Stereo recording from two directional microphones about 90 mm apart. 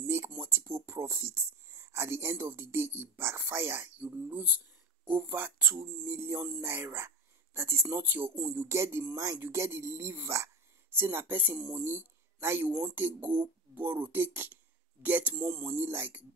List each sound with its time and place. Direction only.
0.0 s a sound: 30° right (ahead or behind)
0.4 s speech: 30° right (ahead or behind)
8.6 s speech: 30° right (ahead or behind)